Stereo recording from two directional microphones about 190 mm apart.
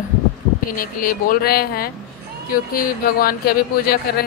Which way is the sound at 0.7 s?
50° left (ahead or behind).